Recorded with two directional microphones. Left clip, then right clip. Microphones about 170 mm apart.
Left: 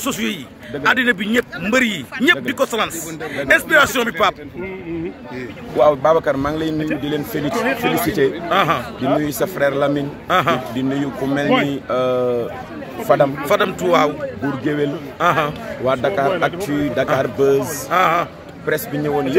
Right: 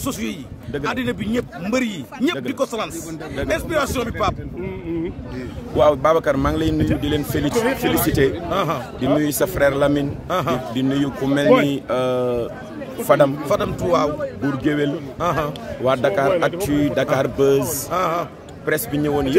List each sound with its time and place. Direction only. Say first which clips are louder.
0.0 s a man's voice: left 4 dB; 10° right (ahead or behind)
5.8 s a man's voice: left 2 dB; 30° right (ahead or behind)
8.5 s a man's voice: left 5 dB; 10° right (ahead or behind)
9.0 s a man's voice: right 2 dB; 35° right (ahead or behind)
10.2 s a man's voice: left 8 dB; 10° right (ahead or behind)
10.8 s a man's voice: even; 45° right (ahead or behind)
11.7 s a man's voice: left 2 dB; 35° right (ahead or behind)
13.5 s a man's voice: left 3 dB; 10° right (ahead or behind)
14.4 s a man's voice: left 1 dB; 30° right (ahead or behind)
15.1 s a man's voice: left 6 dB; 10° right (ahead or behind)
15.8 s a man's voice: even; 40° right (ahead or behind)
17.6 s a man's voice: left 5 dB; 15° right (ahead or behind)
18.7 s a man's voice: left 1 dB; 40° right (ahead or behind)